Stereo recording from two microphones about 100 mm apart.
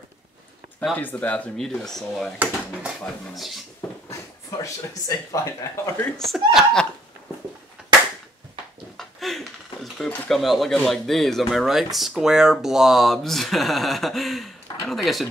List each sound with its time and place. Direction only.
0.9 s speech: 15° left (ahead or behind)
3.3 s speech: centre (ahead or behind)
4.1 s speech: 35° left (ahead or behind)
6.1 s speech: centre (ahead or behind)
8.9 s a sound: centre (ahead or behind)
10.0 s speech: 15° left (ahead or behind)
10.3 s speech: centre (ahead or behind)